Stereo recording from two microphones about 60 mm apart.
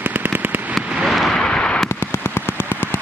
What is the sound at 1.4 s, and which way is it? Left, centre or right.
Fireworks, centre.